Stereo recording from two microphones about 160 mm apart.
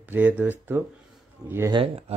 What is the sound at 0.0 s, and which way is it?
Speech, 10° right (ahead or behind).